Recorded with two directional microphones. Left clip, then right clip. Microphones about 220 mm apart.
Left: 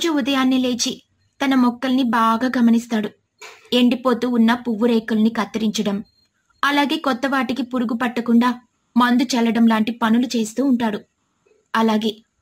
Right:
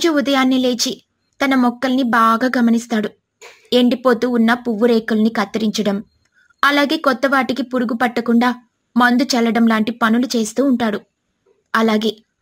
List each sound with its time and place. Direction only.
0.0 s speech: 20° right (ahead or behind)